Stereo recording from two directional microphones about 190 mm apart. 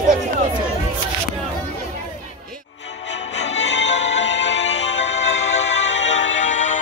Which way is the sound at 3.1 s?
70° left (ahead or behind).